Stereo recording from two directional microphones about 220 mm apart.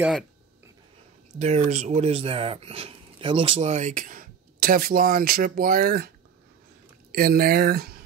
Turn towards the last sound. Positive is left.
turn(degrees=-45)  # may be behind; listen again after turning